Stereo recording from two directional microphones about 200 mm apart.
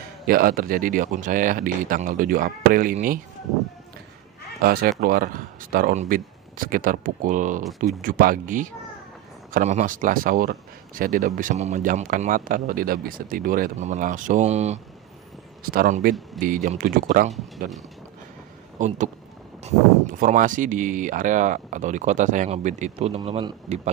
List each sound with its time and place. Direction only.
0.3 s speech: 45° right (ahead or behind)
4.6 s speech: 45° right (ahead or behind)
15.6 s speech: 45° right (ahead or behind)
18.8 s speech: 40° right (ahead or behind)